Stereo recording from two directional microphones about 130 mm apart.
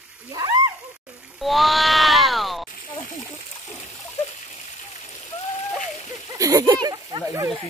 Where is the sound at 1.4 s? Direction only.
Centre (ahead or behind).